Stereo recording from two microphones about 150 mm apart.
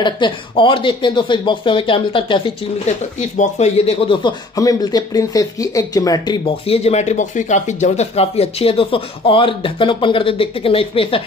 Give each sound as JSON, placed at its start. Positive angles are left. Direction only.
{"t": 0.0, "sound": "speech", "side_deg": 30}
{"t": 3.2, "sound": "speech", "side_deg": 50}